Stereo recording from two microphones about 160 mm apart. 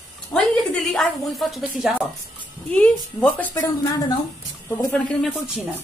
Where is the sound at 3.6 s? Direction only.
20° left (ahead or behind).